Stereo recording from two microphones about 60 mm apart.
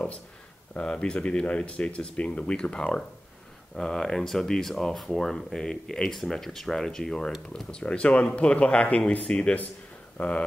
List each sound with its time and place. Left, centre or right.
0.7 s speech: centre